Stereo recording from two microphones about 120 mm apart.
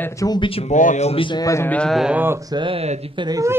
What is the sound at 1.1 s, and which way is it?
Speech, 45° left (ahead or behind).